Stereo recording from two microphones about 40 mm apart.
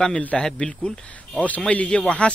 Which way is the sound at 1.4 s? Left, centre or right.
Left.